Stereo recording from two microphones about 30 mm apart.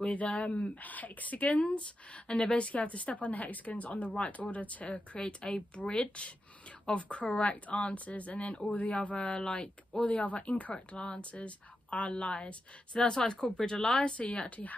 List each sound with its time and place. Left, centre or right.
0.3 s speech: left
1.6 s a woman's voice: left
5.2 s a woman's voice: left
6.9 s a woman's voice: left
10.2 s a woman's voice: left
14.1 s a woman's voice: left